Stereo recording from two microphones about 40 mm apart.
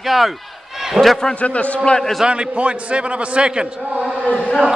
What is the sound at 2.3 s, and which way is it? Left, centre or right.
A man's voice, right.